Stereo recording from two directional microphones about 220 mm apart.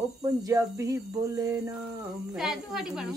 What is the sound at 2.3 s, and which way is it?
Speech, centre (ahead or behind).